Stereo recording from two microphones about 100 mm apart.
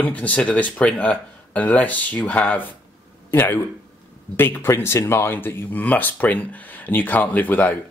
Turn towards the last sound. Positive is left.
turn(degrees=15)  # may be behind; listen again after turning